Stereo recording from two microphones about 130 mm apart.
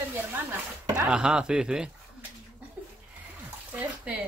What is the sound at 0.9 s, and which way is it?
Speech, 5° right (ahead or behind).